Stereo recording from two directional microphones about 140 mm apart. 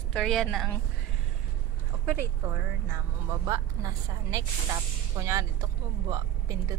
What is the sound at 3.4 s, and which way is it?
A woman's voice, 25° right (ahead or behind).